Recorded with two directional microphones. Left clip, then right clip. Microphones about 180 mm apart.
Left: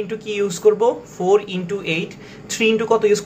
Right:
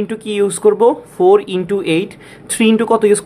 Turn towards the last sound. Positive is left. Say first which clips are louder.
# right 4 dB
turn(degrees=-55)  # may be behind; listen again after turning